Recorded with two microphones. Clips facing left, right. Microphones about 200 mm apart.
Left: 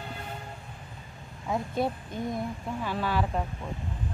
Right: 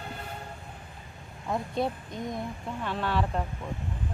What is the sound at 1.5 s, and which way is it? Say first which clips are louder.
Speech: left 1 dB; centre (ahead or behind).